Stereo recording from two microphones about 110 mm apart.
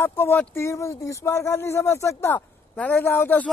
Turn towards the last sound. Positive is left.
turn(degrees=15)  # may be behind; listen again after turning